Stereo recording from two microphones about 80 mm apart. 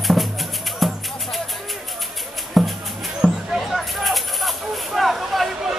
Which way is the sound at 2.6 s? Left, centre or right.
Centre.